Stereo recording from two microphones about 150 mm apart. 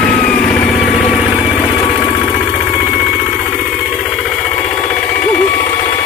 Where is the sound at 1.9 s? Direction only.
5° right (ahead or behind).